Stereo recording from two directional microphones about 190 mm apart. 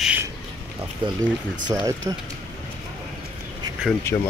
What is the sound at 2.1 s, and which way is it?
Speech, 20° right (ahead or behind).